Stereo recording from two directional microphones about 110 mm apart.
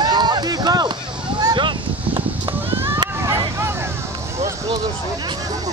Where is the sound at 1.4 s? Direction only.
45° right (ahead or behind).